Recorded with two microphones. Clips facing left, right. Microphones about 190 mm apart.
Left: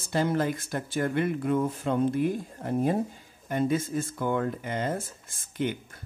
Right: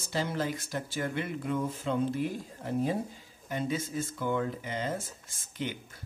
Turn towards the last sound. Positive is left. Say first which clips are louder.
# left 6 dB
turn(degrees=50)  # may be behind; listen again after turning